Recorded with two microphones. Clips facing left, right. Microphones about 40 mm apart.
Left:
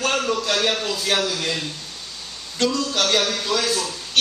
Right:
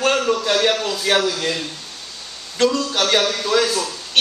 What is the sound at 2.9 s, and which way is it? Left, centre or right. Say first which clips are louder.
Speech: right 2 dB; right.